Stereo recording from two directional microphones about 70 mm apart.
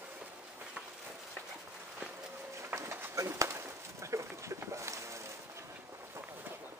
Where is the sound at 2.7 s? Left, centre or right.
Right.